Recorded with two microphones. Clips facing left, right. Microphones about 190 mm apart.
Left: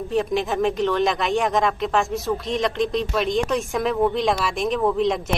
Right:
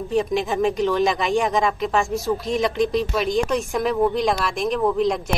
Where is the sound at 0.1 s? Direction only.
Centre (ahead or behind).